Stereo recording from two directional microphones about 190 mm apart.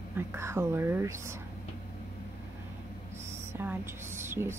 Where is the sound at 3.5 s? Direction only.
10° right (ahead or behind).